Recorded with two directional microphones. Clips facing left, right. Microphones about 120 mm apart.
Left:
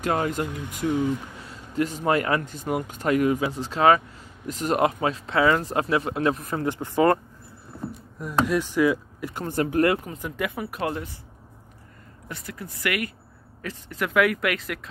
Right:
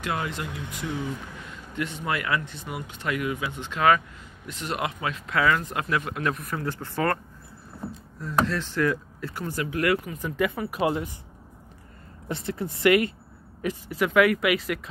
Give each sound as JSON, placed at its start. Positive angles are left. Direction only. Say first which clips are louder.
{"t": 0.0, "sound": "speech", "louder": "left 5 dB", "side_deg": 40}
{"t": 8.5, "sound": "speech", "louder": "left 4 dB", "side_deg": 10}
{"t": 9.3, "sound": "speech", "louder": "left 1 dB", "side_deg": 25}
{"t": 9.6, "sound": "speech", "louder": "left 7 dB", "side_deg": 45}
{"t": 10.1, "sound": "speech", "louder": "right 3 dB", "side_deg": 5}
{"t": 10.8, "sound": "speech", "louder": "right 4 dB", "side_deg": -15}
{"t": 12.3, "sound": "speech", "louder": "right 7 dB", "side_deg": -25}
{"t": 13.6, "sound": "speech", "louder": "right 6 dB", "side_deg": -15}
{"t": 13.9, "sound": "speech", "louder": "right 1 dB", "side_deg": 0}